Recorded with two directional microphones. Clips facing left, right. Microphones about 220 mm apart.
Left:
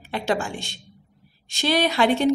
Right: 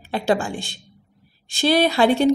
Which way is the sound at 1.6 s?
35° right (ahead or behind).